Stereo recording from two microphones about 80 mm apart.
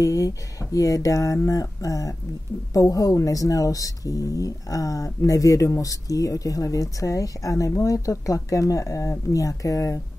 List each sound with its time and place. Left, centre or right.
0.0 s speech: left